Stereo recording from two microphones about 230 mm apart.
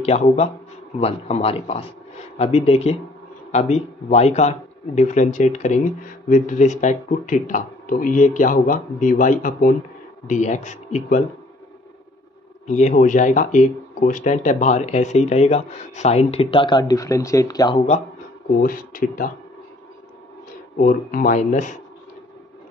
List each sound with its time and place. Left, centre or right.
0.0 s speech: left
12.6 s speech: left
18.6 s speech: left
20.7 s speech: left